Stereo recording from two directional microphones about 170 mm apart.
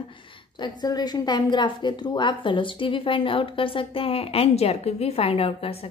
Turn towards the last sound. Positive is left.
turn(degrees=35)  # may be behind; listen again after turning